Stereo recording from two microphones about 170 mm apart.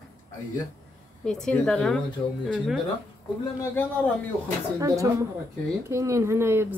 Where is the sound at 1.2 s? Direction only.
5° left (ahead or behind).